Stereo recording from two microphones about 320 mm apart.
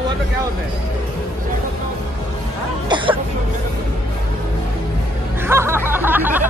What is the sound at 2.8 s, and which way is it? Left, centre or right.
Cough, centre.